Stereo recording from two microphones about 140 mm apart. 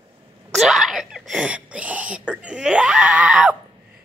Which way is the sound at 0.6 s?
Centre (ahead or behind).